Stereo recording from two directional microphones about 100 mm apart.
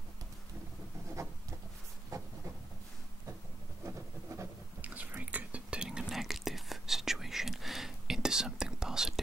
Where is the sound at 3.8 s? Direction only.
25° right (ahead or behind).